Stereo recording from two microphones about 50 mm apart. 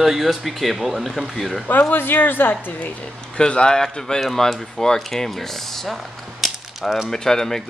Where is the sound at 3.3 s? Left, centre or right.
Centre.